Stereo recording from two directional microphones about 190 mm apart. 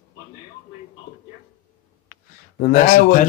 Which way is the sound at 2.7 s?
45° left (ahead or behind).